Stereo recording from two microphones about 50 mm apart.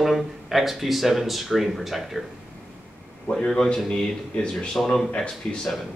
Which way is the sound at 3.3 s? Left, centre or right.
Centre.